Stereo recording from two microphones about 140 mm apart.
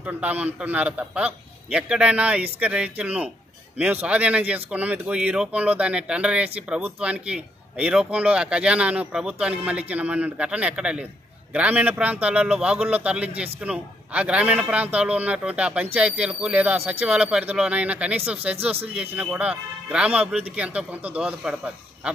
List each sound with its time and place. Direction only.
0.0 s a man's voice: 10° right (ahead or behind)